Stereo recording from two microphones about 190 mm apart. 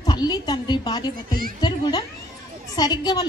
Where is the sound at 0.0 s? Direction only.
20° left (ahead or behind).